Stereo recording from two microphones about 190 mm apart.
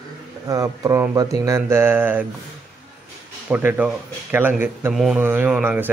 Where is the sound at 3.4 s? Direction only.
10° right (ahead or behind).